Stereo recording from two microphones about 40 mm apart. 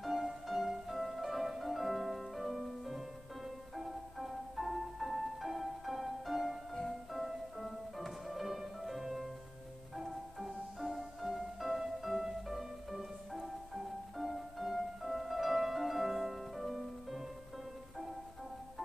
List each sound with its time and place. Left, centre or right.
0.0 s music: centre